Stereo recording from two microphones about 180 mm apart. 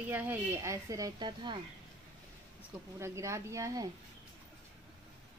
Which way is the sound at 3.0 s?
15° right (ahead or behind).